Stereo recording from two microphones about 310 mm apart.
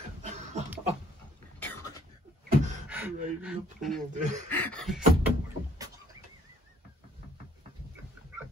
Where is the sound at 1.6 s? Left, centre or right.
Centre.